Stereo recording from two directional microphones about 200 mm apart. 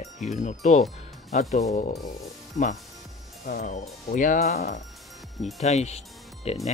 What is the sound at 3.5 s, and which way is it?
Speech, 40° left (ahead or behind).